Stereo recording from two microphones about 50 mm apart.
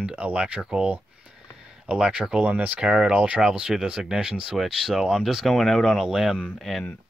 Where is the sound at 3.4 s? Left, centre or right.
Centre.